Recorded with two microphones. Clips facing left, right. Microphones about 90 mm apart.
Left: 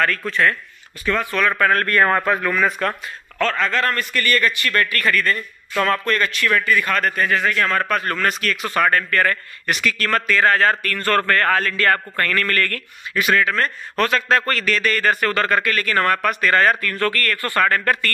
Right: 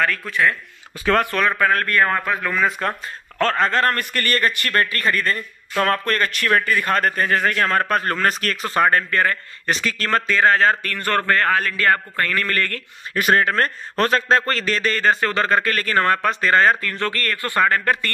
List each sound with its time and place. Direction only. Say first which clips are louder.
0.0 s a man's voice: left 1 dB; 10° right (ahead or behind)
1.0 s speech: right 4 dB; 65° right (ahead or behind)
1.5 s a man's voice: left 1 dB; 5° right (ahead or behind)
2.5 s a man's voice: left 1 dB; 15° right (ahead or behind)
3.3 s a man's voice: right 2 dB; 40° right (ahead or behind)
4.9 s a man's voice: left 1 dB; 30° right (ahead or behind)
8.7 s a man's voice: right 1 dB; 25° right (ahead or behind)
13.1 s a man's voice: right 1 dB; 45° right (ahead or behind); by 18.1 s 20° right (ahead or behind)